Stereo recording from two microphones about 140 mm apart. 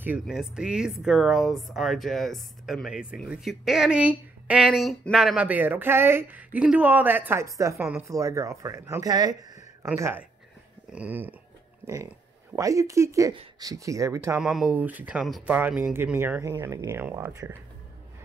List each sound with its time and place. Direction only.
0.0 s speech: 5° right (ahead or behind); by 9.4 s 30° right (ahead or behind)
9.9 s speech: 20° right (ahead or behind)
14.3 s speech: 5° right (ahead or behind); by 17.6 s 20° right (ahead or behind)